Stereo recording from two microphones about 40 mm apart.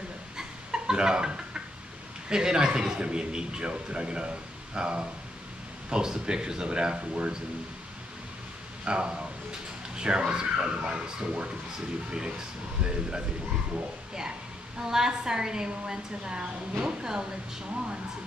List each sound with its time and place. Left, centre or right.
0.4 s chicken: centre
2.2 s speech: centre
8.8 s speech: right
14.8 s a woman's voice: centre